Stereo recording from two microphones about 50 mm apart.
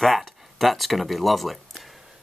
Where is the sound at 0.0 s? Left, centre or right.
Centre.